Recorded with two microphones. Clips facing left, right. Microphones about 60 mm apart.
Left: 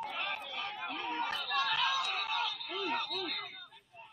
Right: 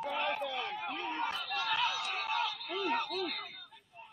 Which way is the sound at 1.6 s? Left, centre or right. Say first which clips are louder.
Left 1 dB; right.